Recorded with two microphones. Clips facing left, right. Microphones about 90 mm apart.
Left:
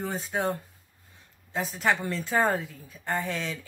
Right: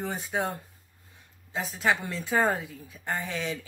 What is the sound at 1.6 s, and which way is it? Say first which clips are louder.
A woman's voice: left 1 dB; 15° right (ahead or behind).